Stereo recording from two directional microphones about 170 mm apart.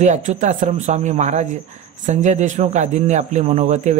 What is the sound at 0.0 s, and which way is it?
A man's voice, 45° right (ahead or behind).